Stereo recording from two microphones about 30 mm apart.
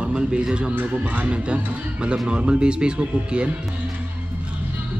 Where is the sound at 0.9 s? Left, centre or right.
Right.